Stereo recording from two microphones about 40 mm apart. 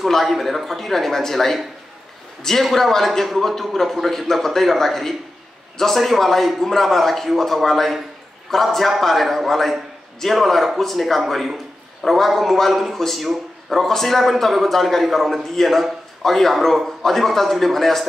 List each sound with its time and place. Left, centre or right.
0.0 s a man's voice: centre